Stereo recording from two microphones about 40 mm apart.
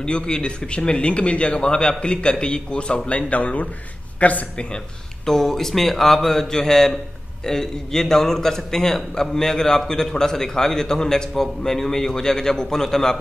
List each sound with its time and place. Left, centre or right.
0.0 s speech: left
4.6 s a man's voice: centre